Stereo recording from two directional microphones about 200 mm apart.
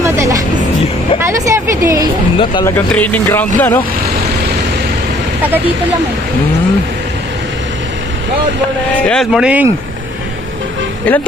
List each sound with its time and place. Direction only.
0.0 s music: 15° right (ahead or behind)
1.2 s a sound: 15° right (ahead or behind)
2.3 s speech: 25° left (ahead or behind)
2.9 s speech: 10° left (ahead or behind)
9.0 s speech: 5° left (ahead or behind)
11.1 s speech: 10° left (ahead or behind)